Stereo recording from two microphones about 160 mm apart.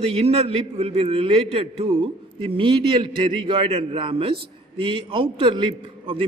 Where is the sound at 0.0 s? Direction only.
40° right (ahead or behind).